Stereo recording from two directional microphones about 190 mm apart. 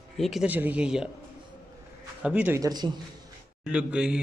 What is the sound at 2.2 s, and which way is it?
Speech, 10° right (ahead or behind).